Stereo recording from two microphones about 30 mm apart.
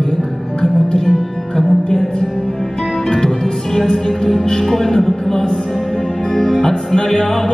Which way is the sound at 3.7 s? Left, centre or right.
Centre.